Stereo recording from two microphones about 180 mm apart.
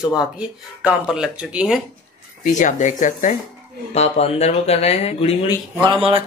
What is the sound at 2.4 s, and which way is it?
Speech, 45° left (ahead or behind).